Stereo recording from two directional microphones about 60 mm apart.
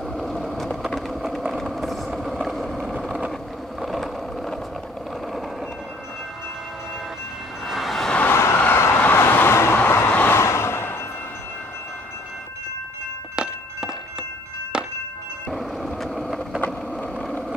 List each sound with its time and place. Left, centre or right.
0.2 s vehicle: centre
3.8 s a sound: centre
7.6 s vehicle: centre
8.3 s vehicle: left
10.4 s a sound: left
13.4 s walk: centre
15.5 s vehicle: centre
16.9 s vehicle: centre